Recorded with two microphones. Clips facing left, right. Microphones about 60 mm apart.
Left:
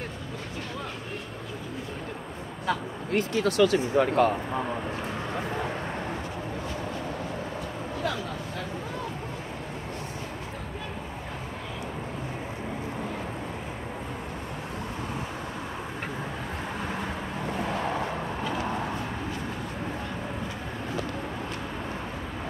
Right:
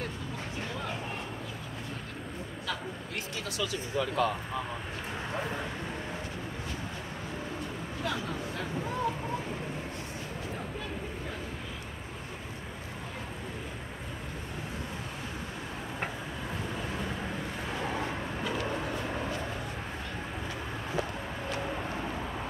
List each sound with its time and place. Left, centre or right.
3.1 s speech: left